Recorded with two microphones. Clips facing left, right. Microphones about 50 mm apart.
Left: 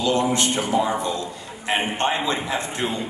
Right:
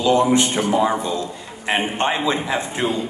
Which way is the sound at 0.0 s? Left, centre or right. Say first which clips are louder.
Right 5 dB; centre.